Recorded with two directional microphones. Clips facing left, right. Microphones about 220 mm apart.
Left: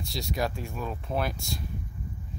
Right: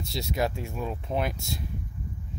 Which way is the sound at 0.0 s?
20° right (ahead or behind).